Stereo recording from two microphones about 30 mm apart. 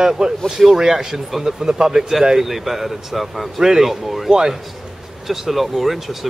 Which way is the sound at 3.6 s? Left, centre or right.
Centre.